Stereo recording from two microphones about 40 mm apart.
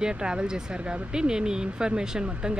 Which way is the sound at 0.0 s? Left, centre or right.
Centre.